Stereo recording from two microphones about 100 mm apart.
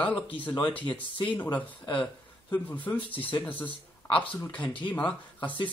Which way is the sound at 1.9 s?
15° left (ahead or behind).